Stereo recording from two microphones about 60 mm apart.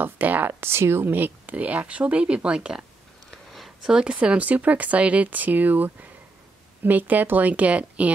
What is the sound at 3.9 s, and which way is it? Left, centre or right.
A woman's voice, centre.